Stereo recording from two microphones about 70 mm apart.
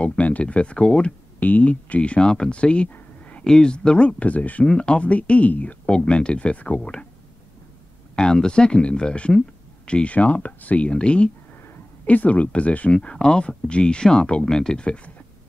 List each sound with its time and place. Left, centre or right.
0.0 s speech: centre
8.2 s speech: centre